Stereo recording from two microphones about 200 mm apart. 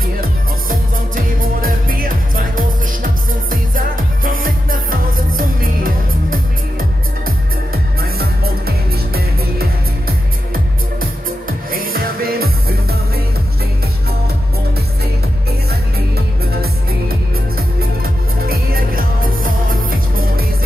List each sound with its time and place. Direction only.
0.2 s music: 45° right (ahead or behind)
18.5 s music: 50° right (ahead or behind)